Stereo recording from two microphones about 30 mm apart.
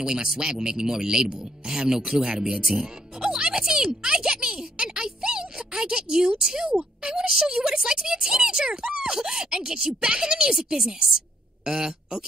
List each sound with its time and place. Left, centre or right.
0.0 s speech: right
2.6 s speech: centre
3.2 s music: right
6.4 s speech: right
11.6 s speech: right